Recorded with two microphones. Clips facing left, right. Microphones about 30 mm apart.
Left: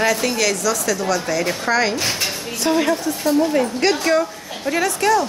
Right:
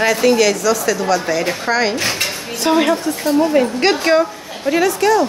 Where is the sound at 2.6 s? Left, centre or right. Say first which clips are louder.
Right 4 dB; right.